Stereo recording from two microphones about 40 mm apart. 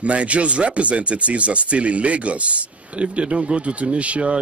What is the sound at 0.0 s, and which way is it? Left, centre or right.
Speech, right.